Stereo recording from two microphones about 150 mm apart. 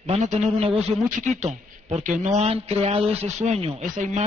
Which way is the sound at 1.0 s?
55° right (ahead or behind).